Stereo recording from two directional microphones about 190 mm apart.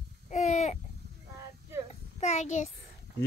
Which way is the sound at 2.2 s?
35° left (ahead or behind).